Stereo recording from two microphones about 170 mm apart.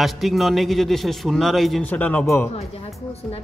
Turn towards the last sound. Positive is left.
turn(degrees=40)  # may be behind; listen again after turning